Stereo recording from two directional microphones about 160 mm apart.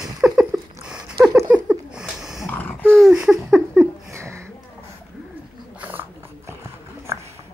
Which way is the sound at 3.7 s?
15° right (ahead or behind).